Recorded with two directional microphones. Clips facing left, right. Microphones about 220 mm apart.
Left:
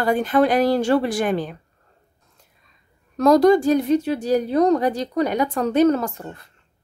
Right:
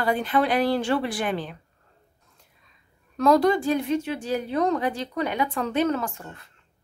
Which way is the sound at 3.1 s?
40° left (ahead or behind).